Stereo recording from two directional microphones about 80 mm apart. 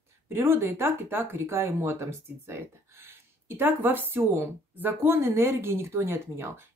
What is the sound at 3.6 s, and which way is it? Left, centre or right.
Speech, right.